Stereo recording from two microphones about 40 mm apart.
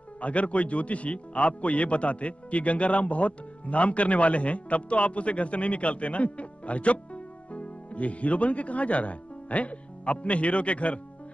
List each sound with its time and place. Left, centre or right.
0.2 s a man's voice: left